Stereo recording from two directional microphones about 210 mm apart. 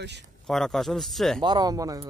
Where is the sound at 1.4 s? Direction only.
20° right (ahead or behind).